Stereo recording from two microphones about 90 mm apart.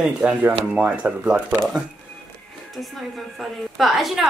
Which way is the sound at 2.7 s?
Centre (ahead or behind).